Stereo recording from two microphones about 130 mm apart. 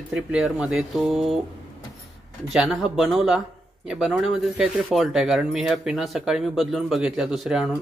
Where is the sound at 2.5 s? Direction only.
Centre (ahead or behind).